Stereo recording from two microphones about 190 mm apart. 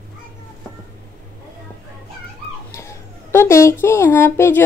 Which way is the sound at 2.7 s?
15° left (ahead or behind).